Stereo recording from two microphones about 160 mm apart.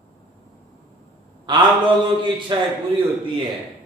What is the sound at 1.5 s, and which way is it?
A man's voice, 30° right (ahead or behind).